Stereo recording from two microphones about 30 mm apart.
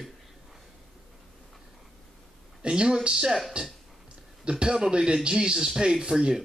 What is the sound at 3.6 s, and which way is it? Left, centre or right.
Speech, right.